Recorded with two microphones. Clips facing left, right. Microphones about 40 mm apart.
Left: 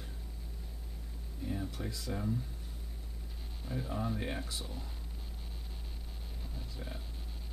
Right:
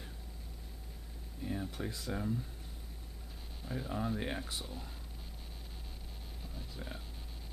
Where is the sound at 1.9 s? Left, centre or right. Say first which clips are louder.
Even; right.